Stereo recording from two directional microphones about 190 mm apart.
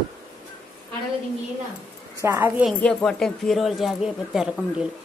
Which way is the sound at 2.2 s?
10° right (ahead or behind).